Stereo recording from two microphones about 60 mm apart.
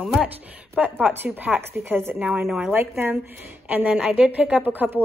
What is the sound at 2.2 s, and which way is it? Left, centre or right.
Speech, right.